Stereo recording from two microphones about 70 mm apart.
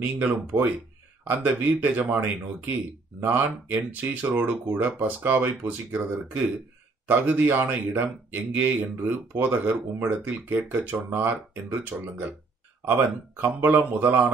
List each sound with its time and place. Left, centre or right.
0.0 s speech: right